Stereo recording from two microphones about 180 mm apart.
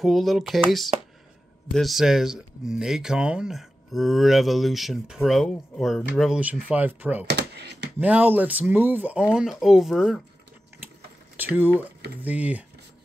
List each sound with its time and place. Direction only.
0.0 s speech: centre (ahead or behind)
7.2 s computer keyboard: 70° right (ahead or behind)
8.0 s speech: 10° right (ahead or behind)
11.3 s speech: 10° right (ahead or behind)